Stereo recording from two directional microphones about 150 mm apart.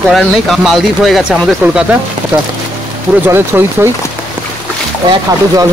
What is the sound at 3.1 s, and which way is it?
Speech, 15° right (ahead or behind).